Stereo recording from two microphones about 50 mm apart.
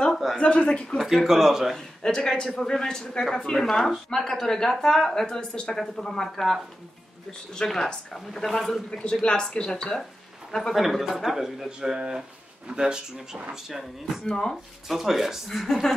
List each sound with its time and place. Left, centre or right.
0.1 s a sound: centre
0.4 s speech: centre
0.9 s speech: centre
1.7 s speech: centre
8.9 s speech: centre
10.7 s speech: centre
14.2 s speech: centre
14.9 s speech: centre